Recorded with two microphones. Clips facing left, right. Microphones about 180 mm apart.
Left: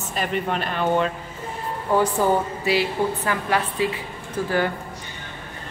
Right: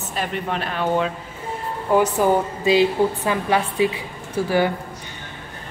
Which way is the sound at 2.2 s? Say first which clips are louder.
Right 2 dB; 20° right (ahead or behind).